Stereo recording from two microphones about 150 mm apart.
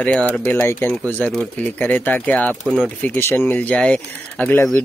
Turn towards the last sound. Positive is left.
turn(degrees=10)  # may be behind; listen again after turning